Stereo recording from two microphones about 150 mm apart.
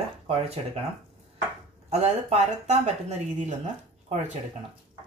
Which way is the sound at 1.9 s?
45° right (ahead or behind).